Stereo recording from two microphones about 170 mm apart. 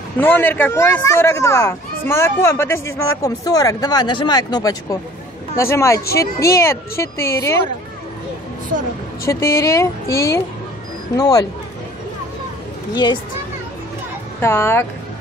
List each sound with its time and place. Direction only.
0.2 s a child's voice: 10° left (ahead or behind)
9.2 s a child's voice: 15° left (ahead or behind)
12.9 s speech: 25° left (ahead or behind)
14.4 s a child's voice: 15° left (ahead or behind)